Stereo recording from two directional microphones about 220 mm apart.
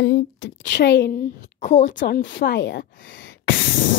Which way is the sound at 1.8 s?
50° left (ahead or behind).